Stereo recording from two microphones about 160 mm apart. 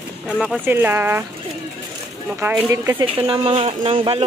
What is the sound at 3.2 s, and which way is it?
Speech, 35° right (ahead or behind).